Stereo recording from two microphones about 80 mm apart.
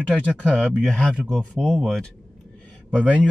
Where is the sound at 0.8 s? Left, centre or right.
Centre.